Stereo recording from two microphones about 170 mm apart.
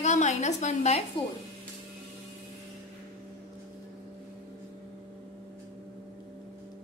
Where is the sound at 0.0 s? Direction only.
45° left (ahead or behind).